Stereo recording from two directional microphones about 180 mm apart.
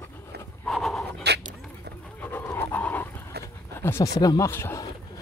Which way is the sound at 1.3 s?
65° right (ahead or behind).